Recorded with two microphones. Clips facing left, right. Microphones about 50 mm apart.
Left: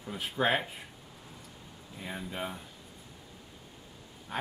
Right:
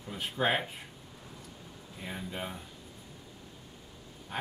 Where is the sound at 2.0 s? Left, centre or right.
Centre.